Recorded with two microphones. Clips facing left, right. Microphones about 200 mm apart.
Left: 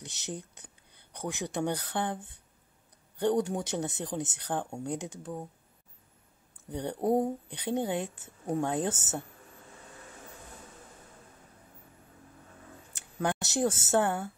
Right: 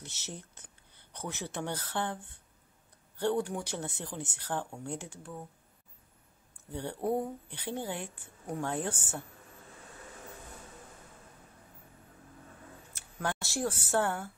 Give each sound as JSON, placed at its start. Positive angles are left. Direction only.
{"t": 0.0, "sound": "speech", "side_deg": 15}
{"t": 6.7, "sound": "speech", "side_deg": 20}
{"t": 13.2, "sound": "speech", "side_deg": 20}